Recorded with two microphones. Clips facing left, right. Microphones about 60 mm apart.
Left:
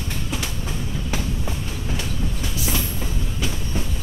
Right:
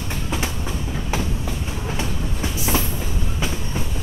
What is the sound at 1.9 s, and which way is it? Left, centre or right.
Train, right.